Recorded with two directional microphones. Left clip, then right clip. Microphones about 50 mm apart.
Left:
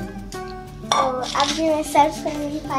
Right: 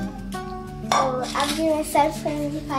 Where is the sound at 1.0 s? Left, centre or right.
Left.